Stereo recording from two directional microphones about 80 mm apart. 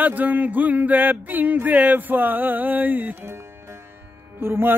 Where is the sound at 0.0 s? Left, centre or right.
Right.